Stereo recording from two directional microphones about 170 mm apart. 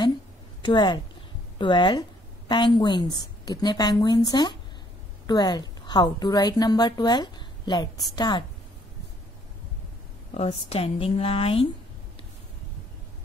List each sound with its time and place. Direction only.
0.6 s a woman's voice: 25° left (ahead or behind)
10.3 s speech: 35° left (ahead or behind)